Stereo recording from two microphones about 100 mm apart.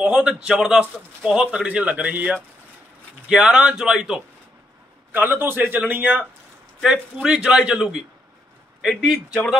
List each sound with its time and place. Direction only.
0.0 s a man's voice: 5° right (ahead or behind)
5.1 s speech: 20° right (ahead or behind)